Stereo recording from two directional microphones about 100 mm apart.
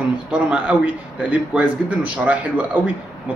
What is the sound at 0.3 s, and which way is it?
A man's voice, 10° right (ahead or behind).